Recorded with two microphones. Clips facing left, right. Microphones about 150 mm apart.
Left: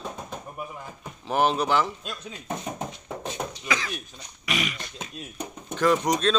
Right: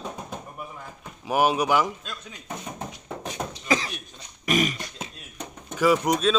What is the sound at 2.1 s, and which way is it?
Speech, 20° left (ahead or behind).